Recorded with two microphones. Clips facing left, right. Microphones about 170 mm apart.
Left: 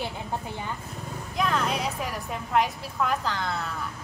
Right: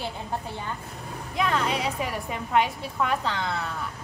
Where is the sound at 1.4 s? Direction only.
Centre (ahead or behind).